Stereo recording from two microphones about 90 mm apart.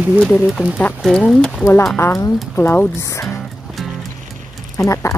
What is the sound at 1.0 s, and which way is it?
Speech, 5° left (ahead or behind).